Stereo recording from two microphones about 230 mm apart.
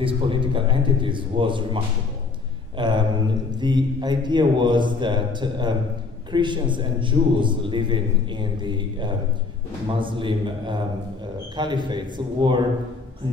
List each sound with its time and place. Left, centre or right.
0.0 s a man's voice: right
2.8 s a man's voice: centre